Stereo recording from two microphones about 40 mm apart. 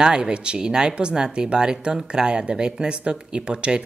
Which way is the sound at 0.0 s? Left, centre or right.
Centre.